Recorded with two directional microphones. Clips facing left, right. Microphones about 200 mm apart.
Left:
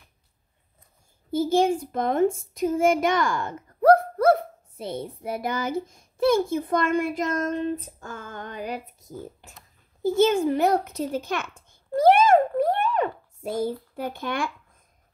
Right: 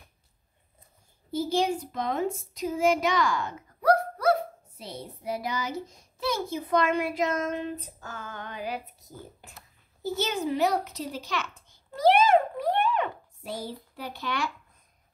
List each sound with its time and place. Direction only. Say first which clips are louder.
1.3 s speech: left 5 dB; 50° left (ahead or behind)
10.0 s a sound: left 9 dB; 50° left (ahead or behind)
13.9 s speech: left 5 dB; 50° left (ahead or behind)